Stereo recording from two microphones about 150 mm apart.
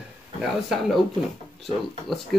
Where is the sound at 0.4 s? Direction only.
Centre (ahead or behind).